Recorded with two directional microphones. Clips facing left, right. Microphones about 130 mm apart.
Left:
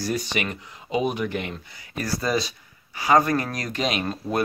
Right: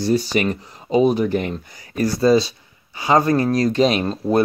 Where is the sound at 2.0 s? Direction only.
30° right (ahead or behind).